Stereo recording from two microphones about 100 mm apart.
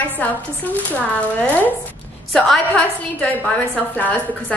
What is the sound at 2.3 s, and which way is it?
A woman's voice, 10° left (ahead or behind).